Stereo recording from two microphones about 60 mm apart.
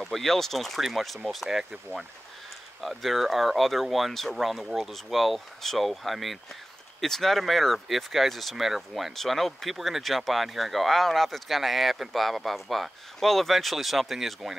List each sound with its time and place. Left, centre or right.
0.0 s speech: centre
2.8 s speech: centre